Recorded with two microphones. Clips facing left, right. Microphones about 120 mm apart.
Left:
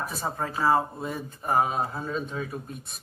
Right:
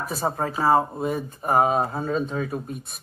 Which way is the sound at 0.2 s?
45° right (ahead or behind).